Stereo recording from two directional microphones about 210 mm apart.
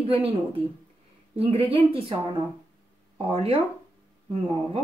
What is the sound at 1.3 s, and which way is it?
Speech, 25° right (ahead or behind).